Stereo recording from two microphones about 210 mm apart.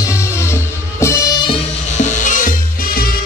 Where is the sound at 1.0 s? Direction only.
15° left (ahead or behind).